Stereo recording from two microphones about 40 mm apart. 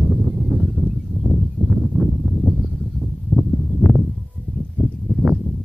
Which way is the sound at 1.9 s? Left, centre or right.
Left.